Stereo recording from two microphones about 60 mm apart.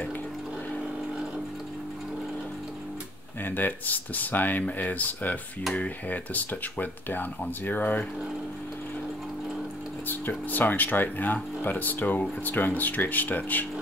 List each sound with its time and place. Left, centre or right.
3.4 s speech: left
10.0 s speech: left